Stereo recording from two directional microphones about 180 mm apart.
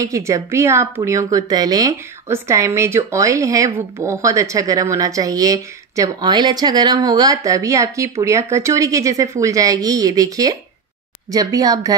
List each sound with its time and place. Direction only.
0.0 s a woman's voice: 15° right (ahead or behind)